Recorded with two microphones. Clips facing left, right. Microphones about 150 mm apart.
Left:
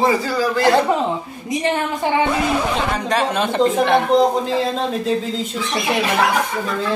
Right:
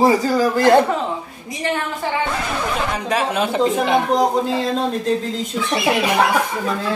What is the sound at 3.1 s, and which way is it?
Speech, 5° right (ahead or behind).